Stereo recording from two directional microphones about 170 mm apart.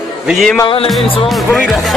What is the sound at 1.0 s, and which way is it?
Speech, 30° left (ahead or behind).